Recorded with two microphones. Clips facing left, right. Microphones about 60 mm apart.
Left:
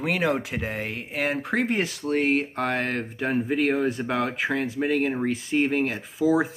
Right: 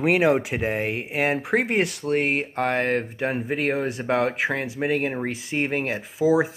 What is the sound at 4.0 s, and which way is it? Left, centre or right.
Speech, centre.